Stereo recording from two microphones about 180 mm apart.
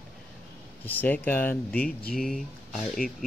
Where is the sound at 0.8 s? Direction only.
10° left (ahead or behind).